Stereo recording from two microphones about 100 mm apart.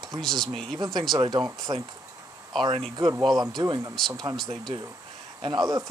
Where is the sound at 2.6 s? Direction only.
65° right (ahead or behind).